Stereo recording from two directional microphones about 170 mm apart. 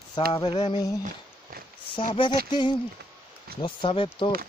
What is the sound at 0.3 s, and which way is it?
Speech, 30° left (ahead or behind).